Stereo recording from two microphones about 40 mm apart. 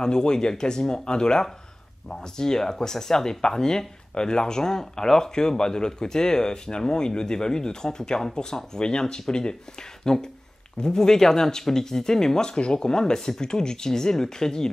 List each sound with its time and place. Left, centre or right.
0.0 s speech: centre